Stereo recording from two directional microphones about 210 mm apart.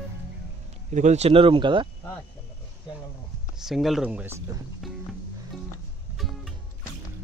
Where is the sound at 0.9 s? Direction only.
35° right (ahead or behind).